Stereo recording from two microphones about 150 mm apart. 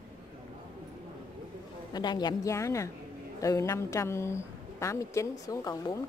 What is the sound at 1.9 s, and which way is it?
A woman's voice, 30° left (ahead or behind).